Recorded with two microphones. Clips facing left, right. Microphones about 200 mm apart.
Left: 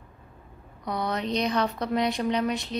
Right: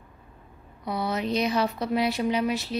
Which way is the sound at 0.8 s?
5° right (ahead or behind).